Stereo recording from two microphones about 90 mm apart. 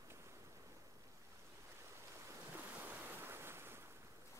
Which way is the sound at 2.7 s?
20° right (ahead or behind).